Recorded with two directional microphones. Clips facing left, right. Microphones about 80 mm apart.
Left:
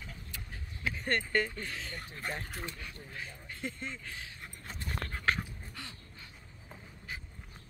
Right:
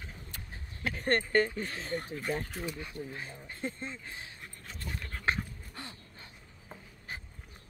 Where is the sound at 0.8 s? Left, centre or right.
Right.